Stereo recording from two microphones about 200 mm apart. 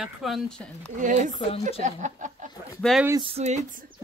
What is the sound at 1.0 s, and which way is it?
Speech, 40° right (ahead or behind).